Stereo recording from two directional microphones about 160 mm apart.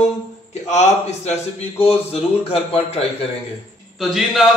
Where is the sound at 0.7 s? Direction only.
45° left (ahead or behind).